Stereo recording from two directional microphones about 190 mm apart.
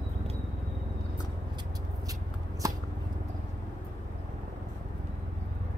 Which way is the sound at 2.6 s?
15° right (ahead or behind).